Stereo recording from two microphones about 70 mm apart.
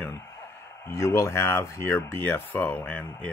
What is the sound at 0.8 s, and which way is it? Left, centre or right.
Speech, left.